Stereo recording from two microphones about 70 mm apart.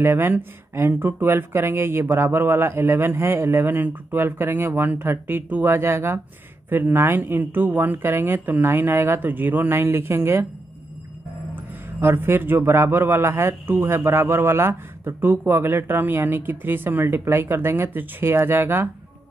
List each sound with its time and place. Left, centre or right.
0.0 s a man's voice: right
11.5 s a sound: right
12.5 s a man's voice: right